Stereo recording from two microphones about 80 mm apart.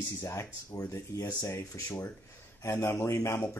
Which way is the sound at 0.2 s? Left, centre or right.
Left.